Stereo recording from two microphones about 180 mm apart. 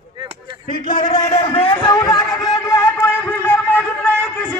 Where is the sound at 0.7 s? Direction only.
45° left (ahead or behind).